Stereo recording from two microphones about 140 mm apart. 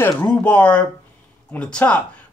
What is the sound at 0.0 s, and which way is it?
Speech, 10° left (ahead or behind).